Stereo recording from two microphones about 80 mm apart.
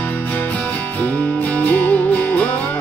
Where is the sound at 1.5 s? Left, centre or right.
Centre.